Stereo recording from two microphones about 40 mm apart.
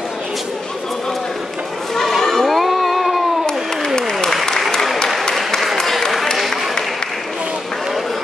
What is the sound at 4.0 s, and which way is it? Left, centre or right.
Applause, centre.